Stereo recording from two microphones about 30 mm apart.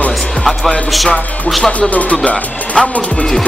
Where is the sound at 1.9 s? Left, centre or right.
Left.